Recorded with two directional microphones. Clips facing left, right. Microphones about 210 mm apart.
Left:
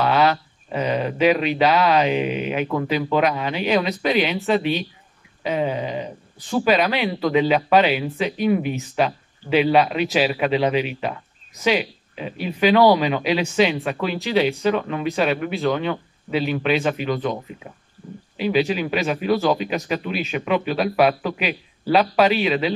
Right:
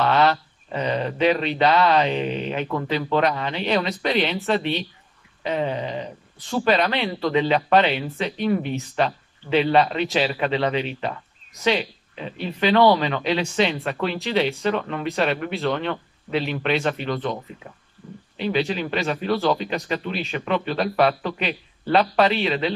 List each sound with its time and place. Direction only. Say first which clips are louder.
0.0 s speech: left 1 dB; 5° left (ahead or behind)
5.4 s a sound: left 2 dB; 5° left (ahead or behind)
6.5 s speech: left 2 dB; 5° left (ahead or behind)
18.4 s speech: left 3 dB; 5° left (ahead or behind)